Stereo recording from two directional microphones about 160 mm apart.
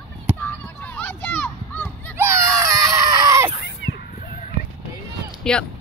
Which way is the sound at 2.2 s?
15° right (ahead or behind).